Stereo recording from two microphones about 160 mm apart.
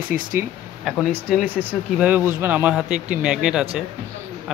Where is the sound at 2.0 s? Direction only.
10° right (ahead or behind).